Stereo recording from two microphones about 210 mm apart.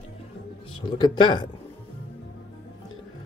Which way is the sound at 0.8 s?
20° left (ahead or behind).